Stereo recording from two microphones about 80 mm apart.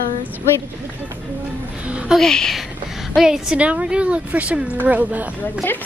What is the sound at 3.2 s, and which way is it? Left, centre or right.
A woman's voice, centre.